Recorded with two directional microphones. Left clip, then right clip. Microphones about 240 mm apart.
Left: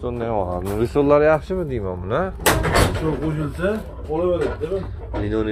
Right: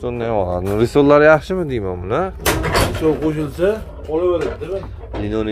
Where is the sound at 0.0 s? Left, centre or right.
Right.